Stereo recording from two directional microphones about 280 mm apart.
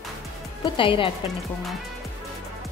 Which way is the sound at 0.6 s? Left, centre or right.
Centre.